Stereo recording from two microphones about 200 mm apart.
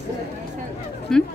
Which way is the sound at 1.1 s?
5° left (ahead or behind).